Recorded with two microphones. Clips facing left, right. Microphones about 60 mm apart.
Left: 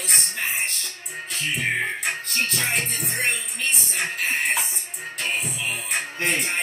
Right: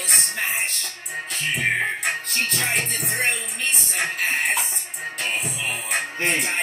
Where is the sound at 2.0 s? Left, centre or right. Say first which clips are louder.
Right 1 dB; centre.